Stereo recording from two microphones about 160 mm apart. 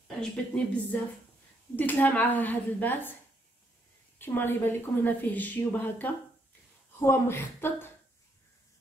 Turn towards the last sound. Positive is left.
turn(degrees=15)  # may be behind; listen again after turning